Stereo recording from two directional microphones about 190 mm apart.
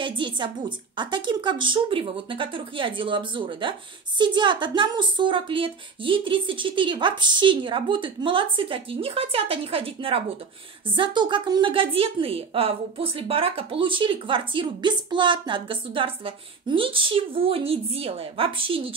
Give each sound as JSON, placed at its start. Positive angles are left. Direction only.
{"t": 0.0, "sound": "a woman's voice", "side_deg": -25}